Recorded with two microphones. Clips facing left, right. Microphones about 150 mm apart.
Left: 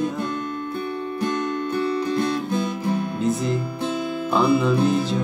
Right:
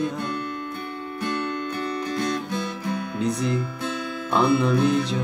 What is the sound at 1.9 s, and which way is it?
Music, 30° left (ahead or behind).